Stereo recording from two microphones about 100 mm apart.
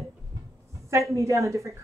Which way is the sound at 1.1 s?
30° right (ahead or behind).